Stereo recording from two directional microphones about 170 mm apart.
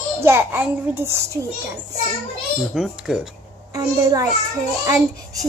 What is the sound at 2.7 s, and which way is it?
Speech, 5° right (ahead or behind).